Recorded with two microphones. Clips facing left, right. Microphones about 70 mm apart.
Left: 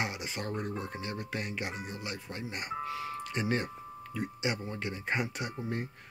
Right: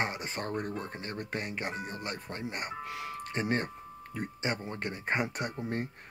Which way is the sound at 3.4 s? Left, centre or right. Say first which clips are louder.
Right 1 dB; right.